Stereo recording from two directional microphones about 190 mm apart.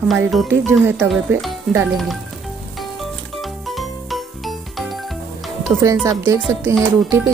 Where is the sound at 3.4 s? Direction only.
Centre (ahead or behind).